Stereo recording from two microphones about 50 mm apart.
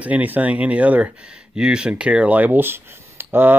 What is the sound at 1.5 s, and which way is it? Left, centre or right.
Speech, centre.